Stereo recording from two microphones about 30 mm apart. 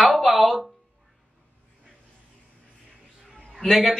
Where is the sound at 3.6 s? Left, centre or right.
Centre.